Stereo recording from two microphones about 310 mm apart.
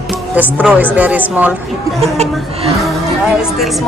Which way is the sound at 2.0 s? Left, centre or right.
Centre.